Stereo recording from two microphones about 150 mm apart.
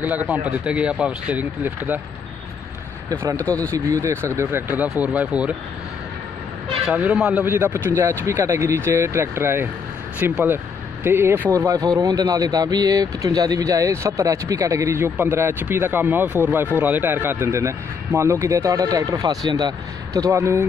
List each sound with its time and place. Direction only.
0.0 s a man's voice: 10° right (ahead or behind)
3.1 s speech: 20° right (ahead or behind)
3.4 s speech: 10° left (ahead or behind)
3.7 s a man's voice: 20° right (ahead or behind)
6.9 s a man's voice: 10° right (ahead or behind)